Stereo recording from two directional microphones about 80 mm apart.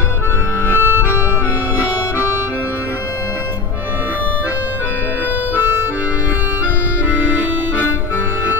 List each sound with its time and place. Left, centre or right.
0.7 s accordion: left